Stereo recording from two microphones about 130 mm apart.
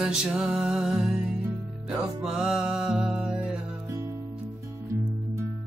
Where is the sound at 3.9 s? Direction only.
20° right (ahead or behind).